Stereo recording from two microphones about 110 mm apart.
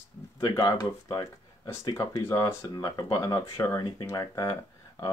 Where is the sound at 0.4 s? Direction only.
35° left (ahead or behind).